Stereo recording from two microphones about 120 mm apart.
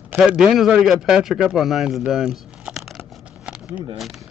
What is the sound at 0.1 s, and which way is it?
A man's voice, 5° right (ahead or behind).